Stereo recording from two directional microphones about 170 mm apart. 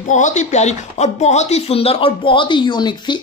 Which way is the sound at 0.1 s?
45° left (ahead or behind).